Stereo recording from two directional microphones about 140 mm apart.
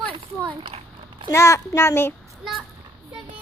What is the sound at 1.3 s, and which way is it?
Speech, 20° left (ahead or behind).